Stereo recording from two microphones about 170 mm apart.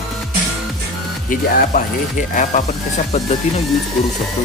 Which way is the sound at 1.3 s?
55° left (ahead or behind).